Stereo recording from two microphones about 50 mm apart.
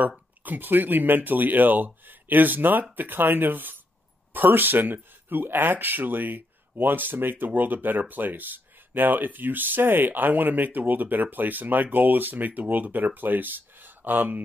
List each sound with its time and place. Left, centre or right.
0.4 s speech: right